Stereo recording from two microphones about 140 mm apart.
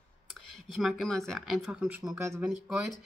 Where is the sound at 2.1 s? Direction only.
20° right (ahead or behind).